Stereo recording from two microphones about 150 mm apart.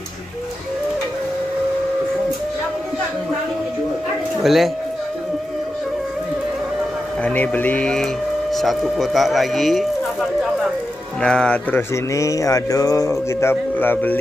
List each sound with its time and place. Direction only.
4.4 s speech: centre (ahead or behind)
7.2 s speech: 10° left (ahead or behind)
11.1 s speech: 5° left (ahead or behind)